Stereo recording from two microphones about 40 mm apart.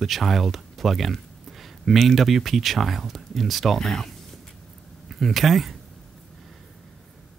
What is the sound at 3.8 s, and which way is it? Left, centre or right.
Speech, centre.